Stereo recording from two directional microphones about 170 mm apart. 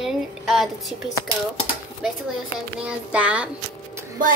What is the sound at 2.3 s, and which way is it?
Speech, 5° right (ahead or behind).